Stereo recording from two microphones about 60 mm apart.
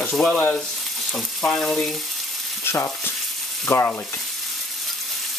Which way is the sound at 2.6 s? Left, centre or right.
Left.